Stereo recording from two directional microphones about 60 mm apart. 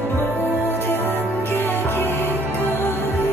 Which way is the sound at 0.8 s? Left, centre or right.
Left.